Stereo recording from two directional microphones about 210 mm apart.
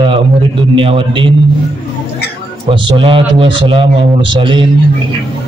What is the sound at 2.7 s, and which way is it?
A man's voice, 25° right (ahead or behind).